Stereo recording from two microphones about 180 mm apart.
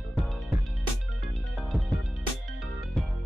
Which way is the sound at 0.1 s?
Centre (ahead or behind).